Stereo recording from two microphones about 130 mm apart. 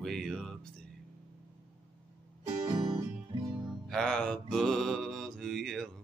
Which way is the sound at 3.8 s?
5° left (ahead or behind).